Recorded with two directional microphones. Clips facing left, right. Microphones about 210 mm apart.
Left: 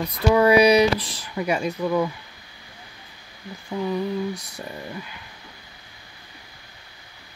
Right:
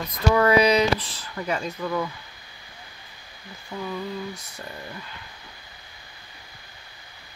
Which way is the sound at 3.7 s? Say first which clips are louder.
Left 6 dB; 15° left (ahead or behind).